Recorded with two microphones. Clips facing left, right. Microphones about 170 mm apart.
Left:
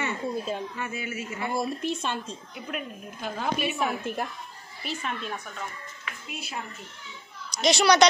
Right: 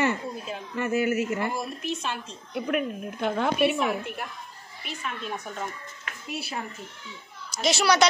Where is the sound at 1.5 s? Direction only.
30° left (ahead or behind).